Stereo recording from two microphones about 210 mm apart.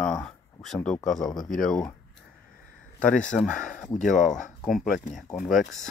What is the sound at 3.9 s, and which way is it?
Speech, 35° left (ahead or behind).